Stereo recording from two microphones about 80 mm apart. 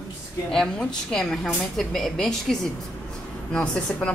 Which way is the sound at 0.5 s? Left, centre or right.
Centre.